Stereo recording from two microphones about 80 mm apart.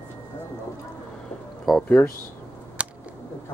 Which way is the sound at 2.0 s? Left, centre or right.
Left.